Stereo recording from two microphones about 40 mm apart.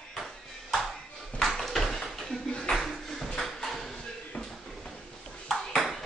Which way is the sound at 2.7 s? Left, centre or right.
Centre.